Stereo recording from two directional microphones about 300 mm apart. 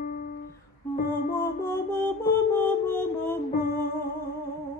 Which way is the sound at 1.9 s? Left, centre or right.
Centre.